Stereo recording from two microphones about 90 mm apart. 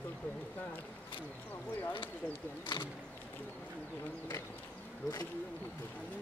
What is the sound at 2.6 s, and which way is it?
Speech, 60° left (ahead or behind).